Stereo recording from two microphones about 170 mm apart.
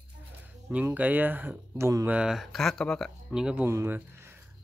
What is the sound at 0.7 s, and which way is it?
Speech, 10° right (ahead or behind).